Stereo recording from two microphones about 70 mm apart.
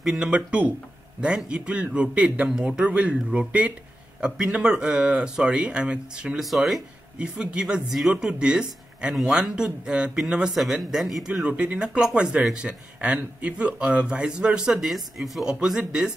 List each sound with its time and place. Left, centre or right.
0.0 s speech: centre
0.3 s speech: centre
6.4 s speech: centre
7.2 s speech: centre
11.4 s speech: centre